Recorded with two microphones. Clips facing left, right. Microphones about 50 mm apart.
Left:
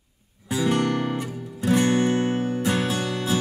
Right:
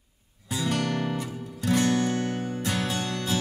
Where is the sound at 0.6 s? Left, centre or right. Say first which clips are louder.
Left 5 dB; left.